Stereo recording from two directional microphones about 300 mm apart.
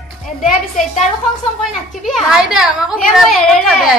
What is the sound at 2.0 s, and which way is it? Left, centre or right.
A woman's voice, centre.